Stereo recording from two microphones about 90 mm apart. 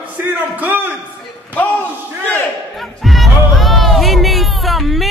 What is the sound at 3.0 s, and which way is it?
Music, centre (ahead or behind).